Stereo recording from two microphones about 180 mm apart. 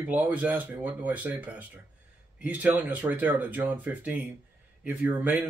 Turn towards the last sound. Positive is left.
turn(degrees=-10)  # may be behind; listen again after turning